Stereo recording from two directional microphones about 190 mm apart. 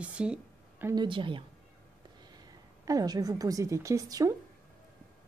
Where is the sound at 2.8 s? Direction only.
20° right (ahead or behind).